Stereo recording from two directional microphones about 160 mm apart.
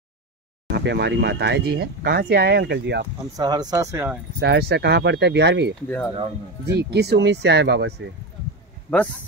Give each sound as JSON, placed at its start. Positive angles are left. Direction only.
{"t": 0.7, "sound": "speech", "side_deg": -90}
{"t": 3.3, "sound": "speech", "side_deg": -25}
{"t": 4.4, "sound": "speech", "side_deg": -90}
{"t": 5.9, "sound": "speech", "side_deg": 10}
{"t": 6.6, "sound": "speech", "side_deg": -90}
{"t": 8.9, "sound": "speech", "side_deg": 10}